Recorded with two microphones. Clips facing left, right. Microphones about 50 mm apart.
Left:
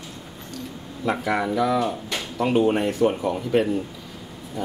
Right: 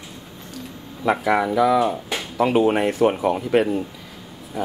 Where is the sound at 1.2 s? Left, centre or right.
Centre.